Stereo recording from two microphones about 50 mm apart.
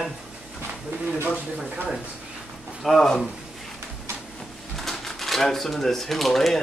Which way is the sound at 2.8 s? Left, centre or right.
Centre.